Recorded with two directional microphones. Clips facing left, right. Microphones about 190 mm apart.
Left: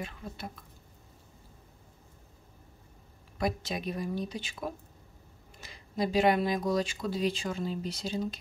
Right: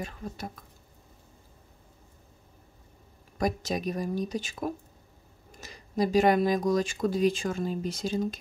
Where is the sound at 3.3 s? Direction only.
45° right (ahead or behind).